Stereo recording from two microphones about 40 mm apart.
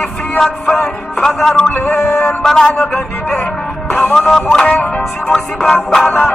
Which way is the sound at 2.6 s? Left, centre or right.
Left.